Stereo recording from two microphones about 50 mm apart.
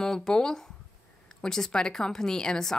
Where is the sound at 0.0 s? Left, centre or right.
Centre.